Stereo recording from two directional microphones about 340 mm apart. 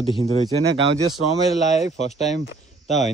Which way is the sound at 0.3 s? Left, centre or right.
Centre.